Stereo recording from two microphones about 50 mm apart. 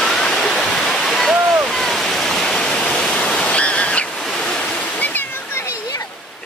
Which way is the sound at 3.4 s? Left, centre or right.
Left.